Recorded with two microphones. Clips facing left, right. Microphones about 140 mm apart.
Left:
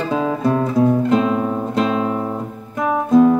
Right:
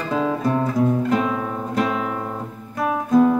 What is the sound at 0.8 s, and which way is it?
Guitar, 25° left (ahead or behind).